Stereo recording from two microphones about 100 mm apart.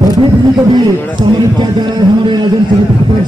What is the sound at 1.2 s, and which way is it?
A man's voice, 45° right (ahead or behind).